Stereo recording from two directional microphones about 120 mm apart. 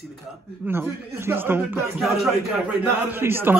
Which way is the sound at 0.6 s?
20° right (ahead or behind).